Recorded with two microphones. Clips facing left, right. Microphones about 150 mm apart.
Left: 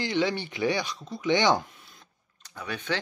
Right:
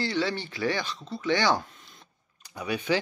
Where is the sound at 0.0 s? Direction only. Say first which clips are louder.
Left 1 dB; 15° left (ahead or behind).